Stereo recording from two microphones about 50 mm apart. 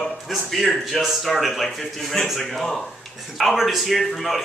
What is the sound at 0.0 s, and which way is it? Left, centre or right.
A man's voice, centre.